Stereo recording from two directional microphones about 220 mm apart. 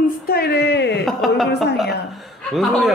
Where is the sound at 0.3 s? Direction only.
45° left (ahead or behind).